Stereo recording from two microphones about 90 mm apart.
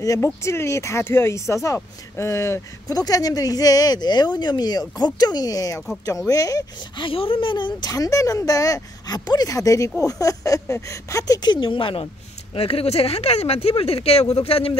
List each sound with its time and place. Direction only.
0.2 s speech: 30° left (ahead or behind)
7.0 s speech: 80° left; by 7.9 s 60° left (ahead or behind)
7.9 s speech: 40° left (ahead or behind); by 12.1 s 75° left (ahead or behind)
12.5 s speech: 90° left